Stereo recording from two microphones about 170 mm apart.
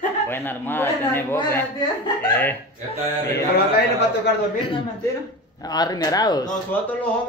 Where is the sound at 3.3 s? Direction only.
70° left (ahead or behind).